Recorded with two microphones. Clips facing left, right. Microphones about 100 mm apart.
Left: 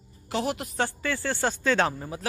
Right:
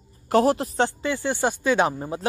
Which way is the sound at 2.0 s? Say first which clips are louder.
Right 6 dB; 25° right (ahead or behind).